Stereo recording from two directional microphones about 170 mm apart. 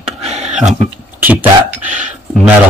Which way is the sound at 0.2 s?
40° right (ahead or behind).